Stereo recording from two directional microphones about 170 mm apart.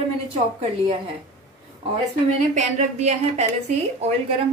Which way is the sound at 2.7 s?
40° right (ahead or behind).